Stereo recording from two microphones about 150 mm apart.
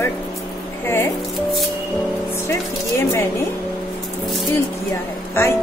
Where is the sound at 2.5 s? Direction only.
20° left (ahead or behind).